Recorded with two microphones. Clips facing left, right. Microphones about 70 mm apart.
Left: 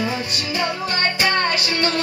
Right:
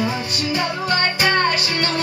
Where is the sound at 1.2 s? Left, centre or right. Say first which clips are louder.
Right 3 dB; right.